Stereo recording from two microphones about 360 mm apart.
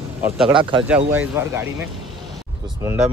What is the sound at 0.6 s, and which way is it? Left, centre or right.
Speech, centre.